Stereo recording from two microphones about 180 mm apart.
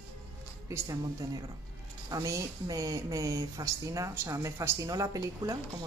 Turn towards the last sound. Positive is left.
turn(degrees=-20)  # may be behind; listen again after turning